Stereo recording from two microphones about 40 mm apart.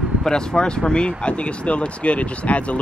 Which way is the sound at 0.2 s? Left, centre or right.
Centre.